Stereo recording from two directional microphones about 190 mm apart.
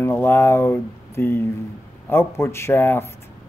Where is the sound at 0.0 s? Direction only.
15° left (ahead or behind).